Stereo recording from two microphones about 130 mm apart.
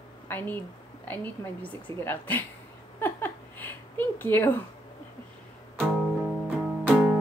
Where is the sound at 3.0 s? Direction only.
15° left (ahead or behind).